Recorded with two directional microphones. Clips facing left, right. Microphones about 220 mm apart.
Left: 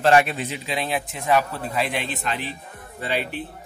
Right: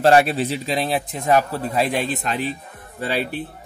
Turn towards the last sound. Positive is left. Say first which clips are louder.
# right 3 dB
turn(degrees=-40)  # may be behind; listen again after turning